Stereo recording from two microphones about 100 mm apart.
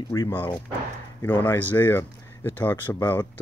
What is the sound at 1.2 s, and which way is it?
Speech, 20° left (ahead or behind).